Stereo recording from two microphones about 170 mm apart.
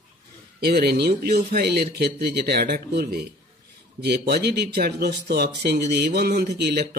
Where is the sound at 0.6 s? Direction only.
70° right (ahead or behind).